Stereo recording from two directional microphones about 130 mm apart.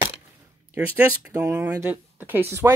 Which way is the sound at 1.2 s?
10° right (ahead or behind).